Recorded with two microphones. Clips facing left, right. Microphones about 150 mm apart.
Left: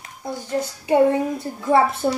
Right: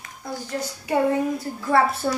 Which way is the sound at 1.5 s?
20° left (ahead or behind).